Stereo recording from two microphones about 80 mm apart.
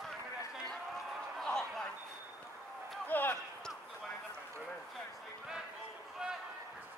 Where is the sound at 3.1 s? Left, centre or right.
Left.